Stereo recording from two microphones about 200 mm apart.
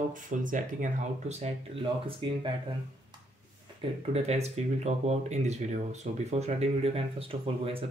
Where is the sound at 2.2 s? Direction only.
25° right (ahead or behind).